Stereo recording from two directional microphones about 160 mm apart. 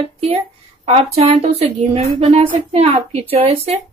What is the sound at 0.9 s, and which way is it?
Speech, 40° right (ahead or behind).